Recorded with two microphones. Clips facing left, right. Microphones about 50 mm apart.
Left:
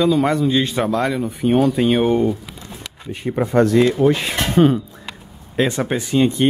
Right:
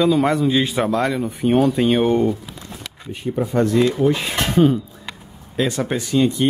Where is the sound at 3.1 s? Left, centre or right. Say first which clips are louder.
Left 2 dB; left.